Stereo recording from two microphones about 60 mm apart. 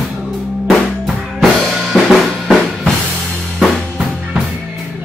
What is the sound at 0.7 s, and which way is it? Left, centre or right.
Drum, centre.